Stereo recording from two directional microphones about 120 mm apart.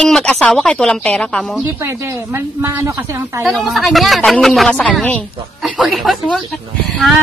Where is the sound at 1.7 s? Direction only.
25° right (ahead or behind).